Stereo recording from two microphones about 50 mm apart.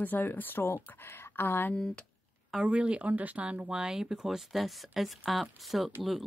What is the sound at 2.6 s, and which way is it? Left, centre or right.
Speech, right.